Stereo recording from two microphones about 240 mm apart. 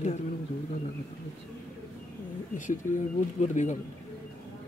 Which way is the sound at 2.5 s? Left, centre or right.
Left.